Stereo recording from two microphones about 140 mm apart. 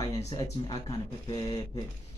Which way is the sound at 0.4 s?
25° left (ahead or behind).